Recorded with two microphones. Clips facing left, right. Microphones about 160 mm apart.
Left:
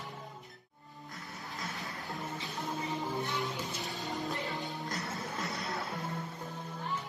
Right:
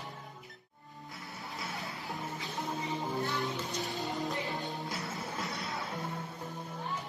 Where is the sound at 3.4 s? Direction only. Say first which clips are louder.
Right 2 dB; centre (ahead or behind).